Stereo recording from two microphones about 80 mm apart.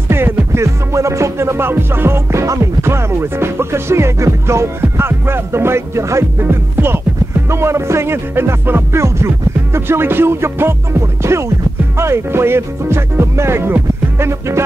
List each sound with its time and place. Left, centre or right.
0.1 s music: right